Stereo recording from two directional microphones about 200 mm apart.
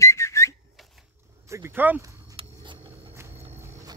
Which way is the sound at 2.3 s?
25° right (ahead or behind).